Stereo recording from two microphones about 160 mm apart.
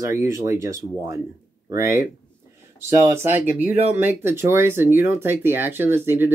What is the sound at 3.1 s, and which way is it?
Speech, 15° right (ahead or behind).